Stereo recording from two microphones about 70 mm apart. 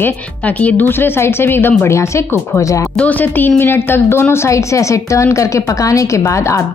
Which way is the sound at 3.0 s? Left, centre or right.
Left.